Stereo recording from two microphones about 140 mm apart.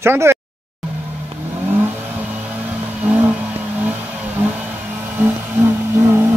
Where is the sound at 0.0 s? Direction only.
20° right (ahead or behind).